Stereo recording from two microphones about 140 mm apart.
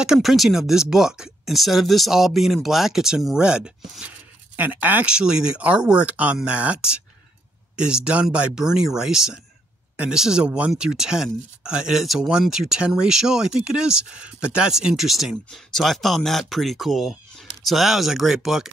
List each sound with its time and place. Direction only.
0.0 s speech: 5° right (ahead or behind)